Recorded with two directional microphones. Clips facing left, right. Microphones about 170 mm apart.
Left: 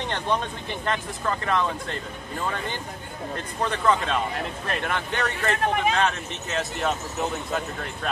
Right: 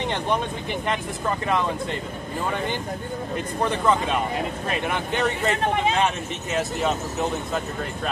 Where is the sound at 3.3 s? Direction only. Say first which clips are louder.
Right 3 dB; 15° right (ahead or behind).